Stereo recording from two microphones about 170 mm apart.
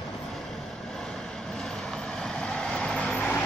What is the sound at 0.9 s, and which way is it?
Vehicle, centre (ahead or behind).